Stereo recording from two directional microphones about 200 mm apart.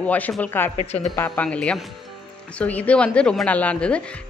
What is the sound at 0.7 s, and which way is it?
Speech, 35° left (ahead or behind).